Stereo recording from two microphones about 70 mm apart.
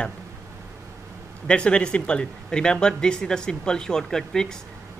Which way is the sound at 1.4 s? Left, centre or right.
Centre.